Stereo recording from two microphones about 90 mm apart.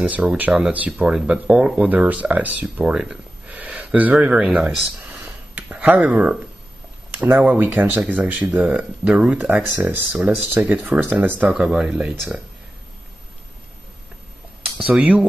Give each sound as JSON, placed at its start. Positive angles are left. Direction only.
{"t": 0.0, "sound": "speech", "side_deg": -15}
{"t": 5.5, "sound": "a sound", "side_deg": -20}
{"t": 7.1, "sound": "speech", "side_deg": -20}
{"t": 11.4, "sound": "speech", "side_deg": -10}
{"t": 14.6, "sound": "speech", "side_deg": -15}